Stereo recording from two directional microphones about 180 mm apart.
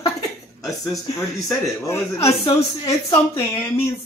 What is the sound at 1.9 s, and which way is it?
Speech, 15° left (ahead or behind).